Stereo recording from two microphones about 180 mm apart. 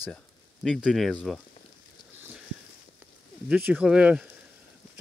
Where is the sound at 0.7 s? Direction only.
Centre (ahead or behind).